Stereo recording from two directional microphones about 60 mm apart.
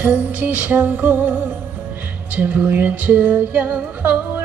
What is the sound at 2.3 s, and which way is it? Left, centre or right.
Music, right.